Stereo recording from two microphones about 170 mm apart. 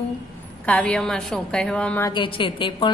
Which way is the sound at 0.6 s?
5° left (ahead or behind).